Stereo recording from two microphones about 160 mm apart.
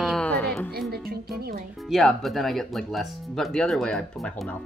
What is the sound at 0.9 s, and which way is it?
Speech, 75° right (ahead or behind).